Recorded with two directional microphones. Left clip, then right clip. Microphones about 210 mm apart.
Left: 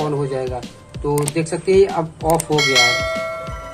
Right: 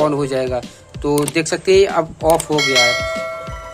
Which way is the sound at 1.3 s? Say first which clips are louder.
Right 2 dB; 35° right (ahead or behind).